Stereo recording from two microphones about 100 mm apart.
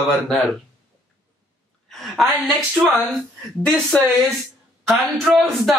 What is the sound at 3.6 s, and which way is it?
Speech, 10° left (ahead or behind).